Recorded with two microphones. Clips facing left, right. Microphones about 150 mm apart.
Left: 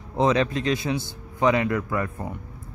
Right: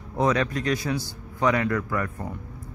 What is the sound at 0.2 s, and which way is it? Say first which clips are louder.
Speech: left 2 dB; 25° left (ahead or behind).